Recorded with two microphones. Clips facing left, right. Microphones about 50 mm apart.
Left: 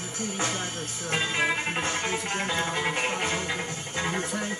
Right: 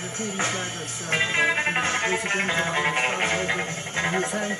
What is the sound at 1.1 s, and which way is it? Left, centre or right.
Music, right.